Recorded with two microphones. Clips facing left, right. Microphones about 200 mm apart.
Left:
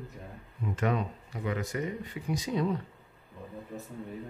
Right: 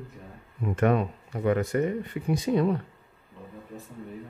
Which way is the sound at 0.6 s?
55° right (ahead or behind).